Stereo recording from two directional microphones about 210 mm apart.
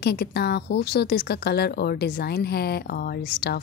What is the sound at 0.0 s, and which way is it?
Speech, 50° left (ahead or behind).